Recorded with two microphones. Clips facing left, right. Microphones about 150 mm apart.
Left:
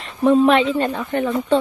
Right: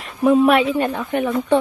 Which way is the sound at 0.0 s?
5° right (ahead or behind).